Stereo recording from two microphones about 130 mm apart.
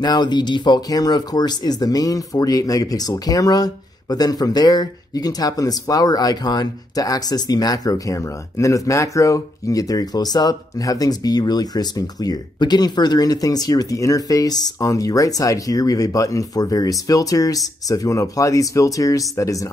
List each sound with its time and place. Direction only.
0.0 s speech: 35° left (ahead or behind)